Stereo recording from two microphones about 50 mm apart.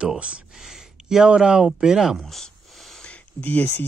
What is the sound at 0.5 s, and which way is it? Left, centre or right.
Speech, centre.